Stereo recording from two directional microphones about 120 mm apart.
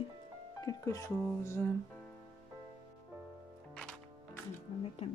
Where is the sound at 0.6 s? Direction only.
30° left (ahead or behind).